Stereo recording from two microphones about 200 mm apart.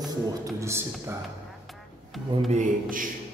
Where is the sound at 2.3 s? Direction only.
35° right (ahead or behind).